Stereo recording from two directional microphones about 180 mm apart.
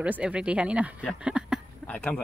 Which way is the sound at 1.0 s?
5° right (ahead or behind).